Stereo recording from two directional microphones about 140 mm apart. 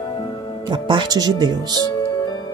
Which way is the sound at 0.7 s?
35° right (ahead or behind).